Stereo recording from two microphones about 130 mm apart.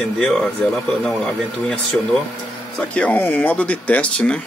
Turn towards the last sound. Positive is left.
turn(degrees=10)  # may be behind; listen again after turning